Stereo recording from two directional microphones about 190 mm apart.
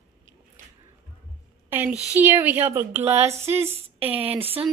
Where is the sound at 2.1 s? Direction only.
10° right (ahead or behind).